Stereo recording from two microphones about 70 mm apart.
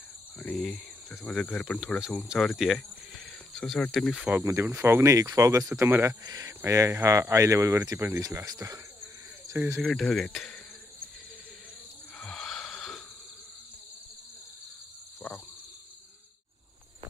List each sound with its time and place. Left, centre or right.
0.6 s speech: centre
1.2 s speech: centre
1.6 s speech: centre
4.4 s speech: right
4.6 s speech: right
5.2 s speech: right
5.9 s speech: right
6.2 s speech: right
6.6 s speech: right
7.8 s speech: right
9.8 s speech: centre
12.2 s a sound: centre
15.2 s cricket: left